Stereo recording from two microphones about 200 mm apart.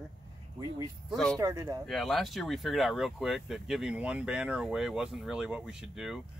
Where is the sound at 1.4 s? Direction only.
15° right (ahead or behind).